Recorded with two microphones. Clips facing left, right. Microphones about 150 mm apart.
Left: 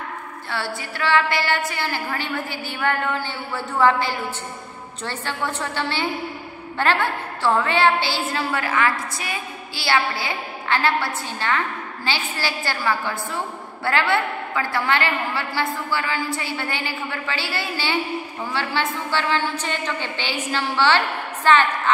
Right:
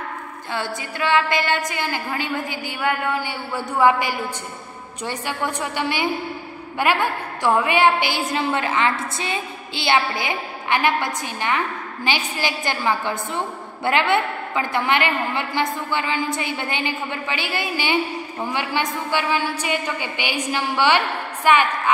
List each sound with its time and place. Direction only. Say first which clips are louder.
0.5 s a woman's voice: right 1 dB; 15° right (ahead or behind)